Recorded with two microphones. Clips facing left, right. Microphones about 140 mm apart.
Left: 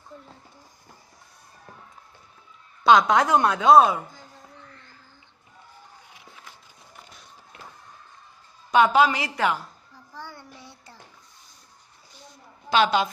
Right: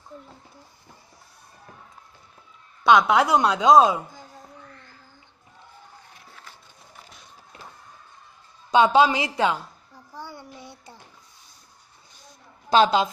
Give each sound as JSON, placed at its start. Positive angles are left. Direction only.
{"t": 2.8, "sound": "speech", "side_deg": 0}
{"t": 8.7, "sound": "a woman's voice", "side_deg": -25}
{"t": 10.1, "sound": "a sound", "side_deg": -15}
{"t": 12.7, "sound": "a woman's voice", "side_deg": -25}